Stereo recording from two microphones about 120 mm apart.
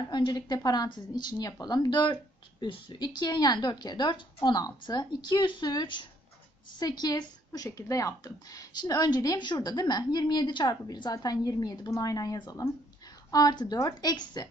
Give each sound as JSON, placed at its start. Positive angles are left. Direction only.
{"t": 0.1, "sound": "speech", "side_deg": 40}